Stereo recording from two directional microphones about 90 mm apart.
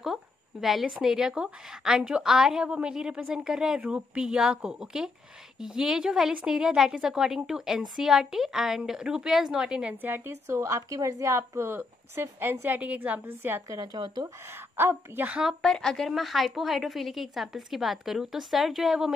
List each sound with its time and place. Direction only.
0.0 s a woman's voice: 5° right (ahead or behind); by 13.6 s 25° right (ahead or behind)
13.9 s speech: 55° right (ahead or behind)
14.8 s a woman's voice: 30° right (ahead or behind)
15.2 s a woman's voice: 10° right (ahead or behind)
15.6 s a woman's voice: 5° left (ahead or behind)